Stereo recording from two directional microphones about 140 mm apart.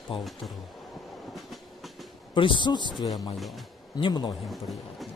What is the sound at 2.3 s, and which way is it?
Speech, 35° left (ahead or behind).